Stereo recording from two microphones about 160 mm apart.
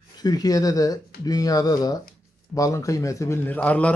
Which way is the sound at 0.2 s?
25° left (ahead or behind).